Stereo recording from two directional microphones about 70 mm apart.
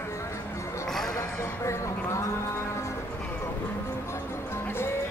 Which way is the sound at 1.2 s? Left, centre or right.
Left.